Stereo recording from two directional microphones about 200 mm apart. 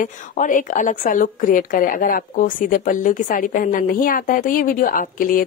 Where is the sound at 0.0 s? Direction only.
40° left (ahead or behind).